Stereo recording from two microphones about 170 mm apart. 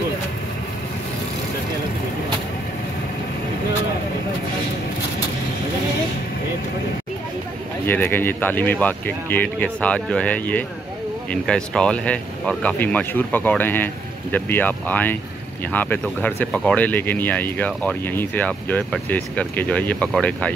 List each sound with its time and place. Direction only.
7.8 s speech: 10° left (ahead or behind)